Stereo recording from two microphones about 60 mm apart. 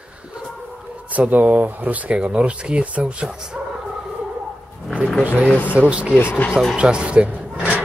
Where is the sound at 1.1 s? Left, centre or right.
Right.